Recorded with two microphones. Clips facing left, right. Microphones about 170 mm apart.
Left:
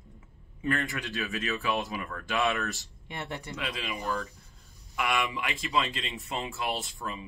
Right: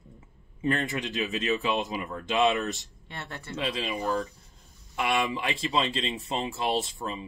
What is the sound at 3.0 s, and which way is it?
Speech, 15° left (ahead or behind).